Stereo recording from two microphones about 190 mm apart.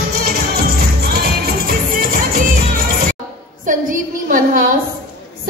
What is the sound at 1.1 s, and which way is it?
Music, 55° right (ahead or behind).